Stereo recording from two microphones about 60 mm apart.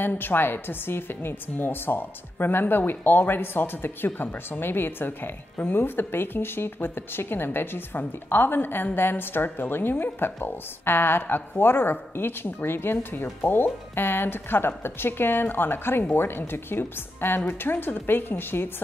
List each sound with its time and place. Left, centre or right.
0.0 s a woman's voice: left